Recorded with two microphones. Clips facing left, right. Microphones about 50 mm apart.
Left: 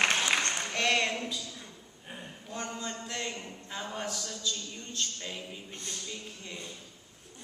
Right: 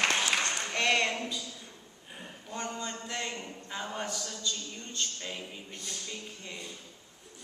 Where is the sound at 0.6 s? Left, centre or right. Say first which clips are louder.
Right 1 dB; centre.